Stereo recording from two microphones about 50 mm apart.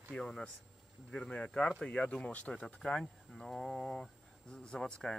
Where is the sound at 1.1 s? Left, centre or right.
Centre.